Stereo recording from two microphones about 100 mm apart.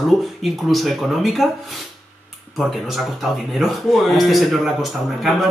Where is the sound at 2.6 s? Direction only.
Centre (ahead or behind).